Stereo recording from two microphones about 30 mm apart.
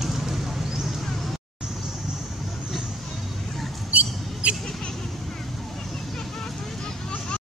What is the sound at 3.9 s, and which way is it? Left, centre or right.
Rodents, right.